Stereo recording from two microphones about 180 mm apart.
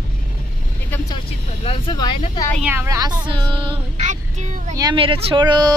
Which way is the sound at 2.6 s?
10° right (ahead or behind).